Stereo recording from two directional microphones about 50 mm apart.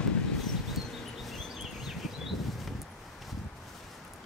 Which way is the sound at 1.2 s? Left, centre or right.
Centre.